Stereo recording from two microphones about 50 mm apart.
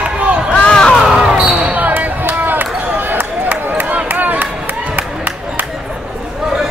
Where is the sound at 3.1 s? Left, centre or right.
Right.